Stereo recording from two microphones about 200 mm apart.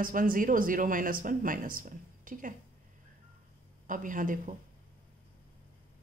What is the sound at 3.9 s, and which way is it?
Speech, 40° right (ahead or behind).